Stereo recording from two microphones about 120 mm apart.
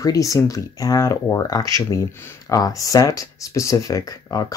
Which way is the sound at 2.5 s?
30° left (ahead or behind).